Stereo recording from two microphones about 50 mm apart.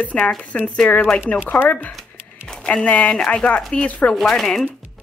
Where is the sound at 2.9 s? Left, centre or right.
Left.